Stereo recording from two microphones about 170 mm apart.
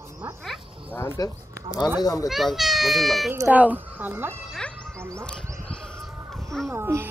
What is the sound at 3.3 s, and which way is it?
Speech, 10° right (ahead or behind).